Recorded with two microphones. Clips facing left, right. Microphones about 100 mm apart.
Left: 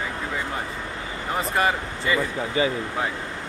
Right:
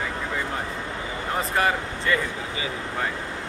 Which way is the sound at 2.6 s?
45° left (ahead or behind).